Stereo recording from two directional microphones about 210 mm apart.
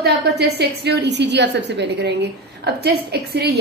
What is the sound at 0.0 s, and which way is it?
A woman's voice, 50° right (ahead or behind).